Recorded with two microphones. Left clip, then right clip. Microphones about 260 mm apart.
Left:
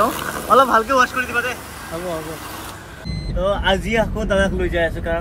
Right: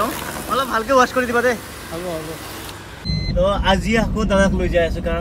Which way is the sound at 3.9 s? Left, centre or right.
Left.